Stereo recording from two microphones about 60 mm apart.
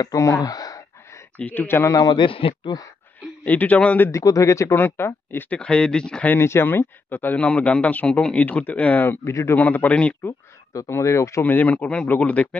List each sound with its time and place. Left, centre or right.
0.0 s speech: left
1.4 s speech: left
1.9 s a man's voice: left
3.4 s a man's voice: left
4.1 s speech: left
4.7 s speech: left
5.5 s speech: centre
6.4 s speech: left
7.3 s a man's voice: left
9.2 s speech: left
9.6 s a man's voice: left
10.9 s speech: left
11.4 s a man's voice: left